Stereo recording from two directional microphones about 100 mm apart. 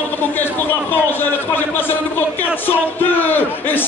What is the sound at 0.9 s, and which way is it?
A man's voice, 20° left (ahead or behind).